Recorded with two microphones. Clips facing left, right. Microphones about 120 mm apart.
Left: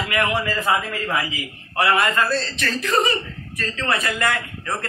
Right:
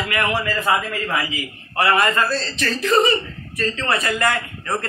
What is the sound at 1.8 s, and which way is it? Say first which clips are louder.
A man's voice: right 1 dB; 5° left (ahead or behind).